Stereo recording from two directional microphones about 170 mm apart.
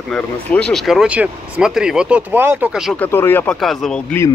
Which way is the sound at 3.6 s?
Centre (ahead or behind).